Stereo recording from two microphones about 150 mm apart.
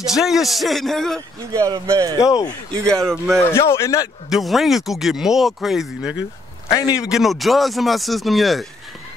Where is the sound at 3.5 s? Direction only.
20° left (ahead or behind).